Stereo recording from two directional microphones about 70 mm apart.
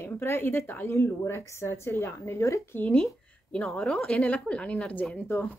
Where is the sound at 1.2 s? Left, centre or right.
Left.